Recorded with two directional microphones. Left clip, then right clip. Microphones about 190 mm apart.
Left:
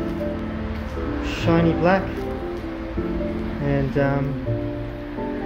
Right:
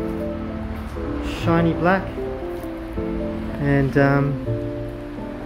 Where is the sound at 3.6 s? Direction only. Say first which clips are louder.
Right 4 dB; 30° right (ahead or behind).